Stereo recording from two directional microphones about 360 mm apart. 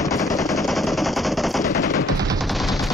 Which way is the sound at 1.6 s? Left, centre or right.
Left.